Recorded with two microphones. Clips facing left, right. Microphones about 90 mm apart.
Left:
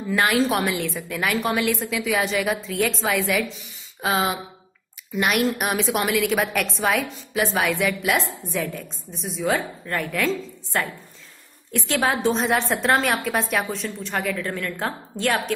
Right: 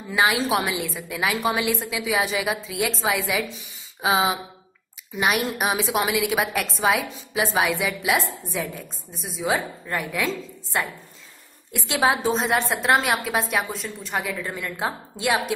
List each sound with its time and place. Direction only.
0.1 s a woman's voice: 15° right (ahead or behind)
7.3 s a woman's voice: 15° right (ahead or behind)
12.3 s a woman's voice: centre (ahead or behind)